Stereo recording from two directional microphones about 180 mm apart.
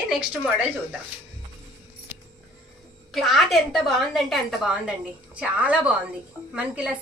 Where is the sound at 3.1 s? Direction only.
Centre (ahead or behind).